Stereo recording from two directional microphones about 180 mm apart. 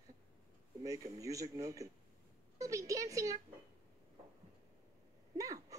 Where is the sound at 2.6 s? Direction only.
20° right (ahead or behind).